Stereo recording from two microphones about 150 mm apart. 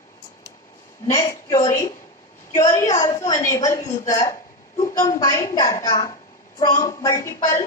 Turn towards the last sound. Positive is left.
turn(degrees=60)  # may be behind; listen again after turning